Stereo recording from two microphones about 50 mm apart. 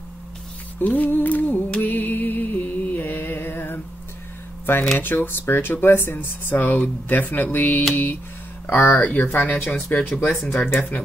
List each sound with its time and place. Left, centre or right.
0.7 s music: left
4.9 s speech: left
8.6 s speech: left
8.9 s speech: left
10.2 s speech: centre
10.5 s speech: left